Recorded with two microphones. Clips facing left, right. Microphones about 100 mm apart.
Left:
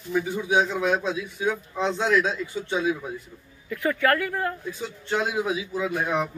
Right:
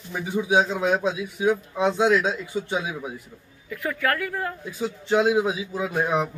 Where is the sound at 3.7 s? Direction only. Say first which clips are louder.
Left 3 dB; centre (ahead or behind).